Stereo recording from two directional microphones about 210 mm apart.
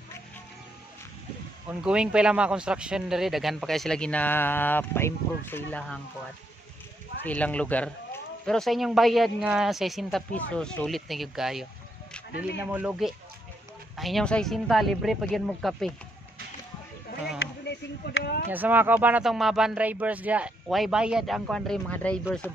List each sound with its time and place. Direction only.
1.7 s speech: 5° right (ahead or behind)
7.2 s speech: 5° left (ahead or behind)
17.6 s speech: 50° left (ahead or behind)
18.5 s speech: 10° right (ahead or behind)